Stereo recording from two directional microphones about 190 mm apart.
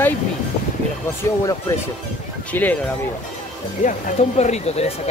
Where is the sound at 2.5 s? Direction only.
10° left (ahead or behind).